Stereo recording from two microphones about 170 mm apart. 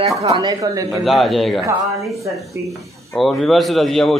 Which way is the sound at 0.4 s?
20° right (ahead or behind).